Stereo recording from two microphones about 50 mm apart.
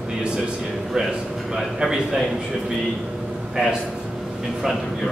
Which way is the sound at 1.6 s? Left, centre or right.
Centre.